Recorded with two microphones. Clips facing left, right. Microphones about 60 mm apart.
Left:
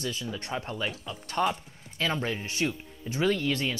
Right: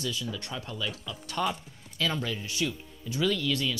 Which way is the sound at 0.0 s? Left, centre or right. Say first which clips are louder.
Even; left.